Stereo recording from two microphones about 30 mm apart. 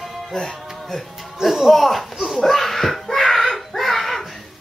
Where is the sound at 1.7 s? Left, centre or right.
Centre.